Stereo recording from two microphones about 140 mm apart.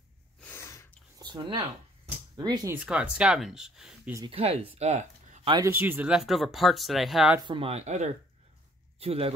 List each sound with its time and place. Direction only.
0.4 s sneeze: 15° left (ahead or behind)
1.1 s a sound: 30° right (ahead or behind)
2.3 s speech: 30° right (ahead or behind)
2.7 s speech: 5° right (ahead or behind)
4.3 s speech: 45° right (ahead or behind)
5.6 s speech: 15° right (ahead or behind)
7.3 s speech: 35° right (ahead or behind); by 8.1 s 55° right (ahead or behind)
9.0 s speech: 45° right (ahead or behind)